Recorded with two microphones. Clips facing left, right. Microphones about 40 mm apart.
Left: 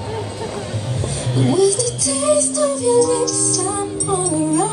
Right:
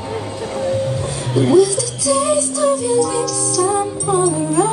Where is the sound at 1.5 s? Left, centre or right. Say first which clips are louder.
Right 2 dB; centre.